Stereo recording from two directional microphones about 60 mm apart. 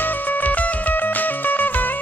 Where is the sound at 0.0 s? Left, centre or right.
Left.